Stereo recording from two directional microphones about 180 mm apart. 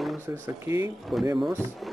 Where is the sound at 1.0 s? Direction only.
Centre (ahead or behind).